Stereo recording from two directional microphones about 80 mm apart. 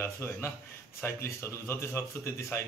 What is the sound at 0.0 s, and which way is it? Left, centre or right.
A man's voice, left.